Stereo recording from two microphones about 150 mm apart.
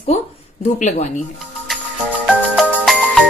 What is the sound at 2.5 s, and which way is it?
Music, centre (ahead or behind).